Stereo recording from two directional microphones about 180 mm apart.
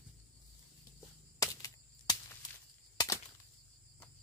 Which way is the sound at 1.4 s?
20° left (ahead or behind).